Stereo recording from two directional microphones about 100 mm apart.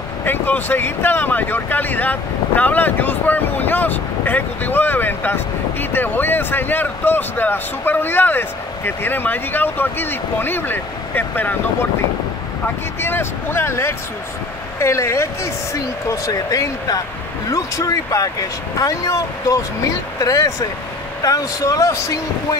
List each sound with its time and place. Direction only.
0.2 s speech: 20° left (ahead or behind)
13.0 s speech: 25° left (ahead or behind)